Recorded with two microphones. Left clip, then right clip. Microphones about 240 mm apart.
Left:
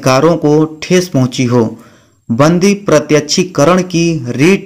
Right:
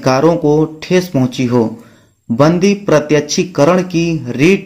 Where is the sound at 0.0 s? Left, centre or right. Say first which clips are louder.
Left 2 dB; left.